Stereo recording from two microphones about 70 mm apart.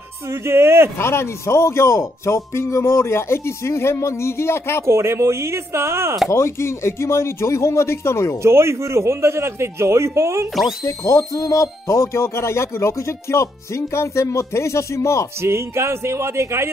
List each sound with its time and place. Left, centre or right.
0.3 s a man's voice: right
0.9 s speech: left
4.8 s a man's voice: right
6.3 s speech: left
8.4 s a man's voice: right
11.1 s speech: left
15.4 s a man's voice: right